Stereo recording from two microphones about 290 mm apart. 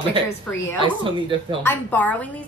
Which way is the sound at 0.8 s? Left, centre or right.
Centre.